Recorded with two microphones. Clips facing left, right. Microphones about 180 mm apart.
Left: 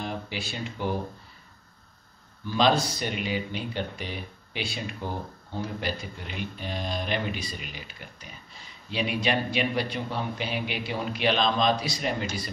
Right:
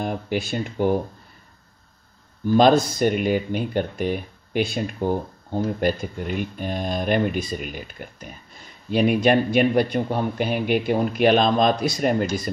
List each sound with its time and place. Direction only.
0.0 s speech: 50° right (ahead or behind)
2.4 s speech: 50° right (ahead or behind)